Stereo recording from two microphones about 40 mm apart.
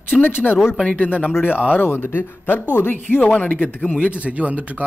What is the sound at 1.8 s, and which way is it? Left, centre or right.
Speech, left.